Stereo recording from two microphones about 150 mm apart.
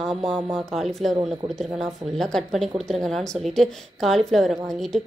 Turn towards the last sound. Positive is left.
turn(degrees=0)  # may be behind; listen again after turning